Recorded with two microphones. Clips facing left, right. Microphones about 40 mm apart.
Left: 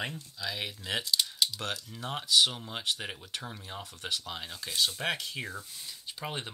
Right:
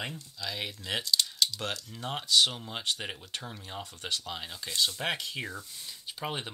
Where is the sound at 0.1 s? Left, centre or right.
Centre.